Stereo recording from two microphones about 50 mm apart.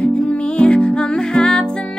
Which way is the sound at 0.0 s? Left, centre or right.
Left.